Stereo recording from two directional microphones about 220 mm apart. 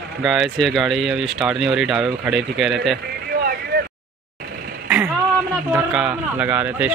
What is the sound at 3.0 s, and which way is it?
Vehicle, 45° right (ahead or behind).